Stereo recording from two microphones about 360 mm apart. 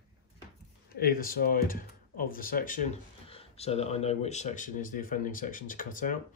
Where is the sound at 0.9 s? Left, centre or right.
Left.